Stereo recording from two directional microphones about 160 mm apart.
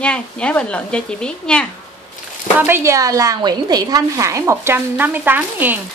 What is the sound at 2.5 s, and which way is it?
A woman's voice, 15° right (ahead or behind).